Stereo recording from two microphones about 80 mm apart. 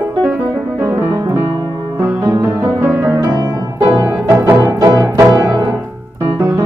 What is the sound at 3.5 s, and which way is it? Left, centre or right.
Music, right.